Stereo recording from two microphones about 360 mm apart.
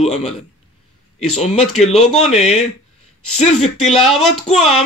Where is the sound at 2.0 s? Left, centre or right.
Centre.